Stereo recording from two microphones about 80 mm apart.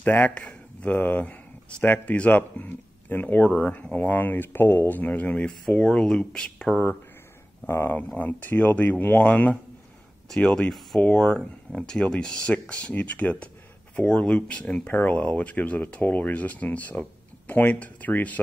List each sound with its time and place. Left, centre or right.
0.0 s speech: centre
7.6 s speech: left